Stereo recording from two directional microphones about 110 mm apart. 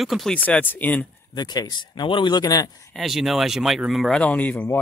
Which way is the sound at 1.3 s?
40° left (ahead or behind).